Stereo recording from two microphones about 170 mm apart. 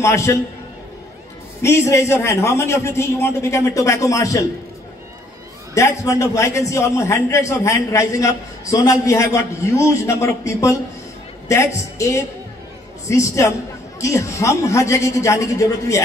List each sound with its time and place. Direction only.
0.0 s a man's voice: 15° left (ahead or behind)
1.6 s a man's voice: 15° left (ahead or behind)
5.8 s a man's voice: 20° left (ahead or behind)